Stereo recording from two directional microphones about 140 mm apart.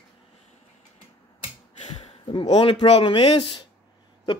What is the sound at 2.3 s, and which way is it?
Speech, 40° left (ahead or behind).